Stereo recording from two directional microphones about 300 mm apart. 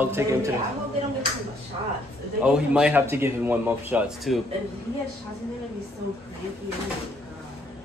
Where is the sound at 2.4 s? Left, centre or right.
Centre.